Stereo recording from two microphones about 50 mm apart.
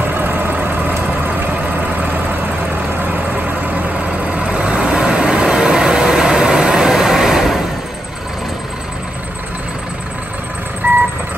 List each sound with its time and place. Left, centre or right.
0.0 s vehicle: right; by 7.6 s centre
10.8 s vehicle: right